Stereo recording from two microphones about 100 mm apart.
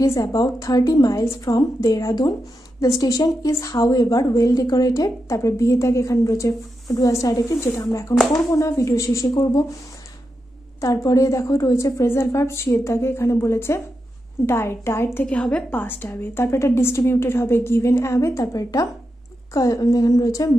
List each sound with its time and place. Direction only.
0.0 s a woman's voice: 35° left (ahead or behind)
10.8 s a woman's voice: 35° left (ahead or behind)
15.2 s a woman's voice: 10° left (ahead or behind); by 20.5 s 35° left (ahead or behind)